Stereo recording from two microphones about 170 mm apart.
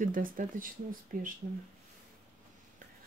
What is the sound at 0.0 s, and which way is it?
Speech, 50° right (ahead or behind).